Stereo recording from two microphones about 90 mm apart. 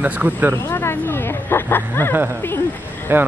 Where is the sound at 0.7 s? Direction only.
30° left (ahead or behind).